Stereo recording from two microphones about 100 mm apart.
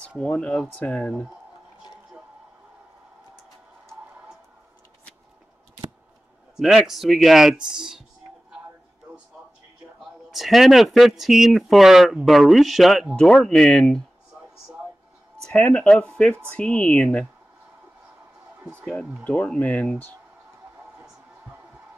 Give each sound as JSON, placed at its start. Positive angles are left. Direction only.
{"t": 0.2, "sound": "speech", "side_deg": 10}
{"t": 6.5, "sound": "speech", "side_deg": -5}
{"t": 9.9, "sound": "speech", "side_deg": 0}
{"t": 15.4, "sound": "speech", "side_deg": 10}
{"t": 18.6, "sound": "a sound", "side_deg": -20}
{"t": 19.2, "sound": "speech", "side_deg": 10}